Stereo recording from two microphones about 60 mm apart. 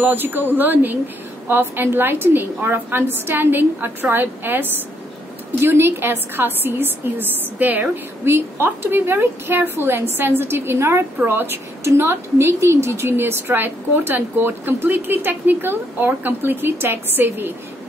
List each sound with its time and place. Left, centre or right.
0.0 s a woman's voice: right